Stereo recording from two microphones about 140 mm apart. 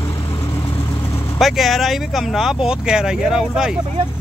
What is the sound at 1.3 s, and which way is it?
Speech, centre (ahead or behind).